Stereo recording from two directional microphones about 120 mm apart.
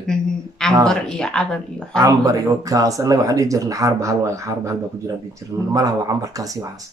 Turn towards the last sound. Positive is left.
turn(degrees=-30)  # may be behind; listen again after turning